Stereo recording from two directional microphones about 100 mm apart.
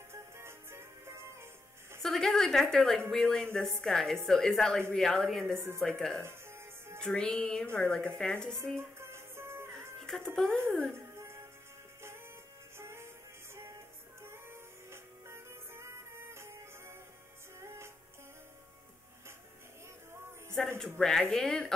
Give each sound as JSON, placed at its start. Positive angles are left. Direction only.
{"t": 0.1, "sound": "music", "side_deg": -25}
{"t": 2.0, "sound": "a woman's voice", "side_deg": 5}
{"t": 3.1, "sound": "music", "side_deg": 5}
{"t": 3.8, "sound": "a woman's voice", "side_deg": 5}
{"t": 5.8, "sound": "music", "side_deg": 5}
{"t": 6.2, "sound": "music", "side_deg": -25}
{"t": 7.0, "sound": "music", "side_deg": 10}
{"t": 8.7, "sound": "music", "side_deg": -25}
{"t": 9.9, "sound": "speech", "side_deg": 5}
{"t": 11.1, "sound": "music", "side_deg": -30}
{"t": 12.7, "sound": "music", "side_deg": -25}
{"t": 14.3, "sound": "music", "side_deg": -25}
{"t": 20.5, "sound": "music", "side_deg": 5}
{"t": 21.0, "sound": "a woman's voice", "side_deg": 5}